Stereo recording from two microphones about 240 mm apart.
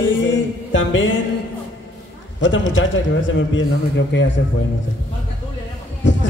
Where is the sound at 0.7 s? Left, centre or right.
Left.